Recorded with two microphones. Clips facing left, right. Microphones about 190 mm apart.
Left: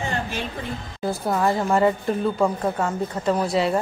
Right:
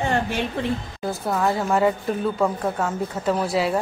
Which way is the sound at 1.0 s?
Centre (ahead or behind).